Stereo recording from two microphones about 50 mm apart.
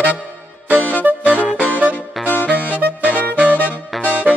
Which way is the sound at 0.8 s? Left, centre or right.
Left.